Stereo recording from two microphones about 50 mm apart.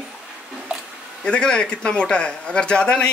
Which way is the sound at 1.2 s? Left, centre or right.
Centre.